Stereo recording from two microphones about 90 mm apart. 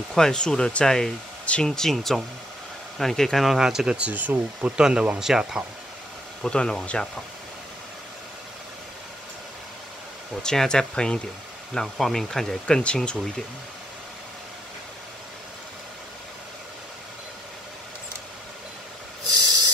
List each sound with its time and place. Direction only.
0.1 s speech: 10° left (ahead or behind); by 4.7 s 20° right (ahead or behind)
4.7 s speech: 10° right (ahead or behind)
6.4 s speech: 10° left (ahead or behind)
10.4 s speech: 5° left (ahead or behind)
19.4 s a sound: 45° right (ahead or behind)